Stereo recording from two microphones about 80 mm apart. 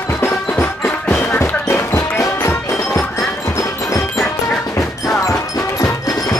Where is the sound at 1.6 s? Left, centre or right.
Left.